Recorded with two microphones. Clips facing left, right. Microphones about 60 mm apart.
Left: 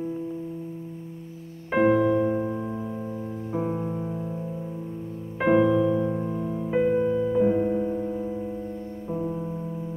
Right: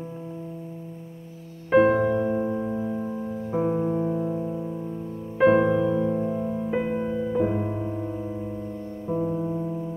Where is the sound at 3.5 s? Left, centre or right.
Centre.